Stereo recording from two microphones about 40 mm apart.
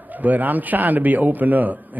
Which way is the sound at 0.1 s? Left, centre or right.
Right.